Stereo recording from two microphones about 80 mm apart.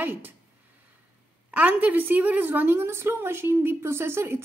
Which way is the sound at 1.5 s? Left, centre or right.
Right.